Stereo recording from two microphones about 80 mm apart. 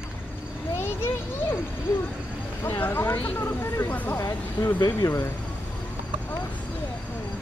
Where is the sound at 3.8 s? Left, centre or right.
Left.